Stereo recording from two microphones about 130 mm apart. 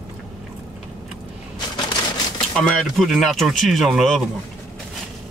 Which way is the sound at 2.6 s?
5° left (ahead or behind).